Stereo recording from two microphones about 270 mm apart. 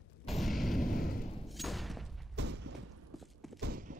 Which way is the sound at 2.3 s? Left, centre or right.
Right.